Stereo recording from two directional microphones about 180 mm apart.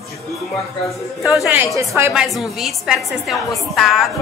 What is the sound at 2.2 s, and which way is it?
A woman's voice, centre (ahead or behind).